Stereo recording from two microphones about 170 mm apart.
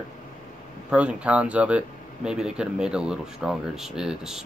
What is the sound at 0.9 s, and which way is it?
Speech, 5° right (ahead or behind).